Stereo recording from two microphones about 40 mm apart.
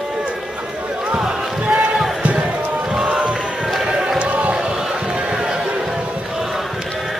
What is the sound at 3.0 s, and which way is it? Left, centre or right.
Crowd, right.